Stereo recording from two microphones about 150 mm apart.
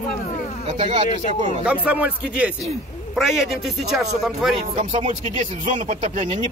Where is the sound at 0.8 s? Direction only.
35° right (ahead or behind).